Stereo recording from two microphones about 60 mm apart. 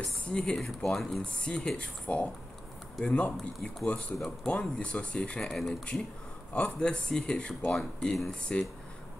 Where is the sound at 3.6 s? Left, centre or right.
Centre.